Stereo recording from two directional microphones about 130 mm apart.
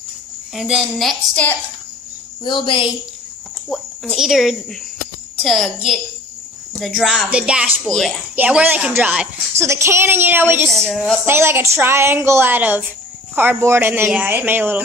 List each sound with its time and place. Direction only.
0.6 s speech: centre (ahead or behind)
2.4 s a woman's voice: 40° left (ahead or behind)
3.6 s speech: centre (ahead or behind)
8.4 s a woman's voice: 10° right (ahead or behind)
9.6 s a woman's voice: 20° right (ahead or behind)
10.7 s speech: 5° left (ahead or behind)
11.2 s a woman's voice: 20° right (ahead or behind)